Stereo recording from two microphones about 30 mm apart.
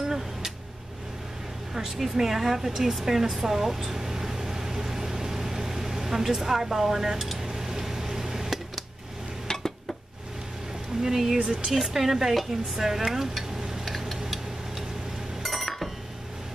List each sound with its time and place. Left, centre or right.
2.1 s stir: centre
3.9 s vehicle: centre
7.4 s a sound: centre
9.5 s a sound: centre
11.0 s stir: centre
11.4 s speech: right
11.7 s stir: centre
13.8 s a sound: centre
15.4 s chink: centre